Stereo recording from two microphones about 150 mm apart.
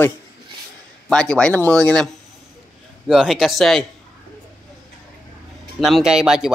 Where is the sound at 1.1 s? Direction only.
5° left (ahead or behind).